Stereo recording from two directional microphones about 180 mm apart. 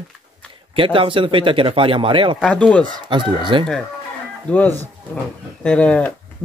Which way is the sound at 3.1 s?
25° right (ahead or behind).